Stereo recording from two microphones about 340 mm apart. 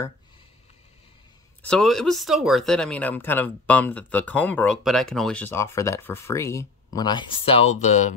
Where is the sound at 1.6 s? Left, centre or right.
Centre.